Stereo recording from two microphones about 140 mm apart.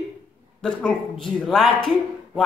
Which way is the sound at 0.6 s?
5° left (ahead or behind).